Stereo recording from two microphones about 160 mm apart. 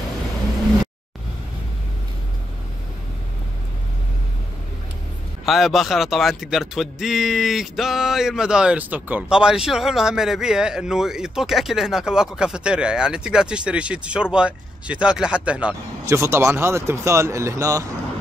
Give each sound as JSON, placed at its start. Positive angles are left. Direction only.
{"t": 5.4, "sound": "a man's voice", "side_deg": 0}
{"t": 16.1, "sound": "speech", "side_deg": -15}